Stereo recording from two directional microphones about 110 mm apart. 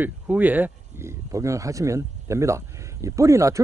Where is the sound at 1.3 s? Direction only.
30° right (ahead or behind).